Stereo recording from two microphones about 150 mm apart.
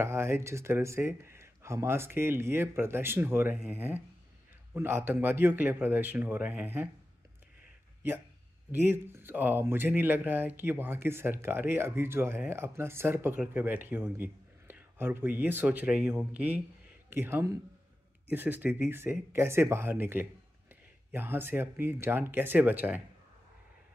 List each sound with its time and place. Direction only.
0.0 s speech: 15° right (ahead or behind)
8.7 s speech: 15° right (ahead or behind)